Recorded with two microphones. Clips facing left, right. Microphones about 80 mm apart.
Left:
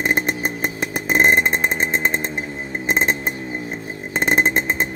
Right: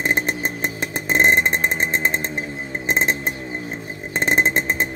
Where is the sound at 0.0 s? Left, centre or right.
Centre.